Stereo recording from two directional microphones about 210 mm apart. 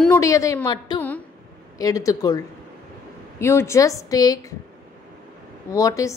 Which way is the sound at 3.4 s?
10° left (ahead or behind).